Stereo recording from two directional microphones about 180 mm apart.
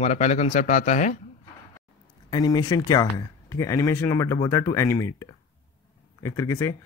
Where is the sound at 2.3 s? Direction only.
20° left (ahead or behind).